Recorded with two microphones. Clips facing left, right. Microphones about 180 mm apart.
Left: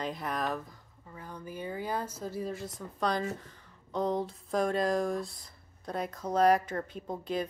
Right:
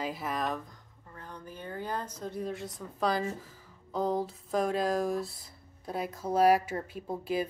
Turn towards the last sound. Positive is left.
turn(degrees=-5)  # may be behind; listen again after turning